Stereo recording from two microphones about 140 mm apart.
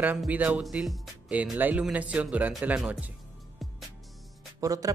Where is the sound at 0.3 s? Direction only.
10° right (ahead or behind).